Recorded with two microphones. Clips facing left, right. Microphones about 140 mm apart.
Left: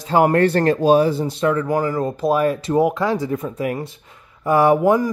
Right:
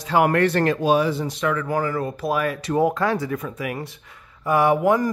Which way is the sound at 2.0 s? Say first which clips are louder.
Left 5 dB; 30° left (ahead or behind).